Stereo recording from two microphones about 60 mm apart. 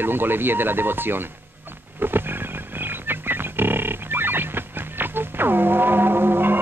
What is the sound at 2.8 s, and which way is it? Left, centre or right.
Music, right.